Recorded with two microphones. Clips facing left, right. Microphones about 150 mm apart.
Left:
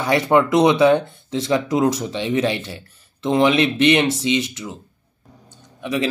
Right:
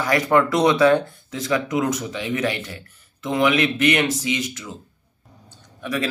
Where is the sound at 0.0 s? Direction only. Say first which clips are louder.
Left 2 dB; 25° left (ahead or behind).